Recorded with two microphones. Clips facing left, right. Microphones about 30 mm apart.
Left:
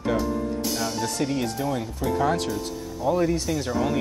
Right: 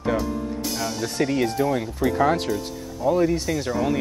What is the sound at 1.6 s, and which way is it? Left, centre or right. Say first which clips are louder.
Speech: right 4 dB; centre.